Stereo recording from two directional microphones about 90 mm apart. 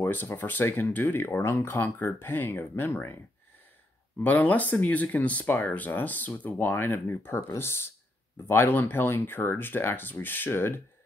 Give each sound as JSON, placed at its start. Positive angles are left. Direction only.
{"t": 0.0, "sound": "speech", "side_deg": 20}
{"t": 4.2, "sound": "speech", "side_deg": 20}